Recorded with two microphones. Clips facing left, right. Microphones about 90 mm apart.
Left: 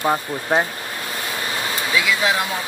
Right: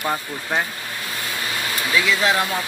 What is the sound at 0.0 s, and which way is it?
Speech, 25° left (ahead or behind).